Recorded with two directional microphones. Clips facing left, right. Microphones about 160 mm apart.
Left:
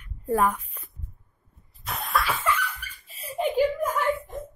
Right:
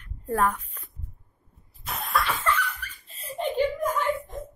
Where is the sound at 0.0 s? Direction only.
10° left (ahead or behind).